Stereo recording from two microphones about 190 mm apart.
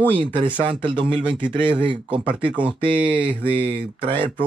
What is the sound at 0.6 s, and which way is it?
Speech, 25° right (ahead or behind).